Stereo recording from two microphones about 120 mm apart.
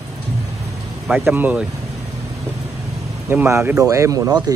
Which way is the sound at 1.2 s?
15° right (ahead or behind).